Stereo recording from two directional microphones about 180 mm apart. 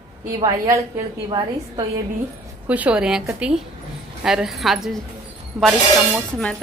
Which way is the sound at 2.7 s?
5° right (ahead or behind).